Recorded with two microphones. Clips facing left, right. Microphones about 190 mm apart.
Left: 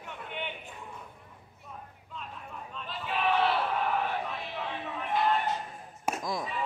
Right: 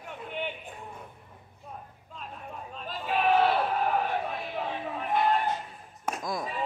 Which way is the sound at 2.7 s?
40° right (ahead or behind).